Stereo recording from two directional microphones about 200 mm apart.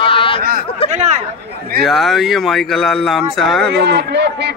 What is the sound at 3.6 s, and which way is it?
Speech, 60° right (ahead or behind).